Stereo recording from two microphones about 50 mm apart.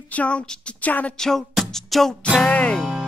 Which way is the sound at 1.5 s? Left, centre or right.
Centre.